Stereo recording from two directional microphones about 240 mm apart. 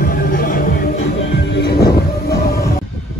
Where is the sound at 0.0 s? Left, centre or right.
Left.